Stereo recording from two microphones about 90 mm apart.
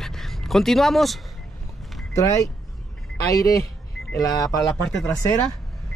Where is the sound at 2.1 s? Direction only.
35° left (ahead or behind).